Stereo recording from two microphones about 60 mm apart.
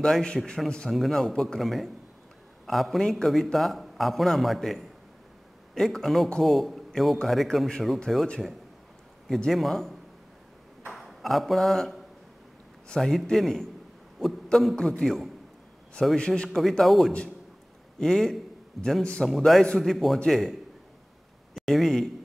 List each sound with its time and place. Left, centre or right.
0.0 s a man's voice: centre
0.9 s a man's voice: centre
9.5 s a man's voice: centre
16.2 s a man's voice: centre
16.4 s a man's voice: centre
21.5 s speech: centre